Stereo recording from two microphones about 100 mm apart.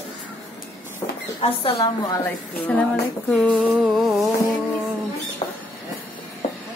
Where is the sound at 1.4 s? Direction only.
70° left (ahead or behind).